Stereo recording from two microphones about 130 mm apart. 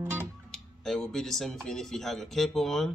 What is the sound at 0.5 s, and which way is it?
Speech, 5° left (ahead or behind).